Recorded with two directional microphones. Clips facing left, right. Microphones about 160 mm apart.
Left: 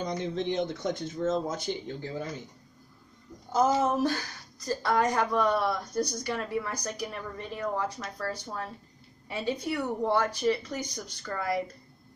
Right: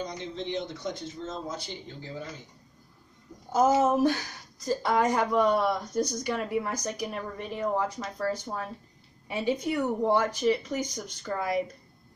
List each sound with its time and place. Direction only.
0.0 s speech: 55° left (ahead or behind)
3.5 s speech: 15° right (ahead or behind)